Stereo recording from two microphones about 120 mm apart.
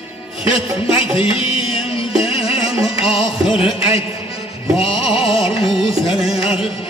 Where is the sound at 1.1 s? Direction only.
50° left (ahead or behind).